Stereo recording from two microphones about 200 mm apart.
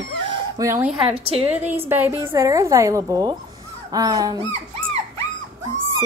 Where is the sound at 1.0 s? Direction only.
25° right (ahead or behind).